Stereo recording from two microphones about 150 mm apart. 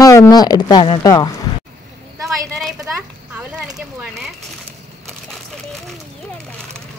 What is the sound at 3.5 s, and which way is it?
Speech, 5° right (ahead or behind).